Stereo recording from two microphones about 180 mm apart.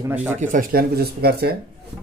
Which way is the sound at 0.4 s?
50° right (ahead or behind).